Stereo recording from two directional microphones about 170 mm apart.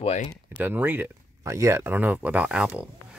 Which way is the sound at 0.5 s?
10° right (ahead or behind).